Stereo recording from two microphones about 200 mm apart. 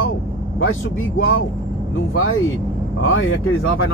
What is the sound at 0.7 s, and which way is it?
Speech, 90° left.